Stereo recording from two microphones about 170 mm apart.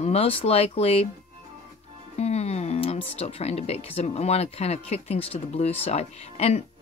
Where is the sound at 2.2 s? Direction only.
40° left (ahead or behind).